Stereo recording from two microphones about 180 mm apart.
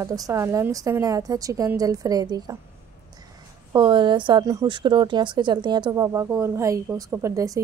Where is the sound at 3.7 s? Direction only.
25° right (ahead or behind).